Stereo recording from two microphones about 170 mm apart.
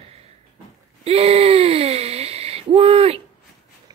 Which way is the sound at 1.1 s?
35° right (ahead or behind).